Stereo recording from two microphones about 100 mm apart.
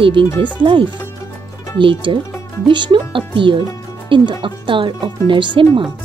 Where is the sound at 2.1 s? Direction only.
60° right (ahead or behind).